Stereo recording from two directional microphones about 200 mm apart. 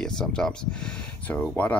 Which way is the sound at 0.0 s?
5° left (ahead or behind).